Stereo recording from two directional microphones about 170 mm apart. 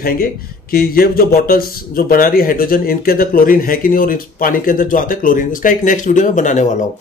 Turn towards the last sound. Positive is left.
turn(degrees=45)  # may be behind; listen again after turning